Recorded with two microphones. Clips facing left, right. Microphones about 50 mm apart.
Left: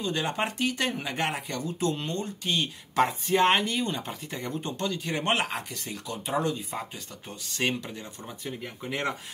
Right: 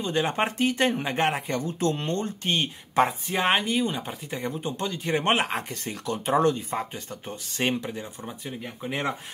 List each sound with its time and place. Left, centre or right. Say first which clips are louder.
0.0 s speech: right 3 dB; right
3.1 s speech: left 2 dB; centre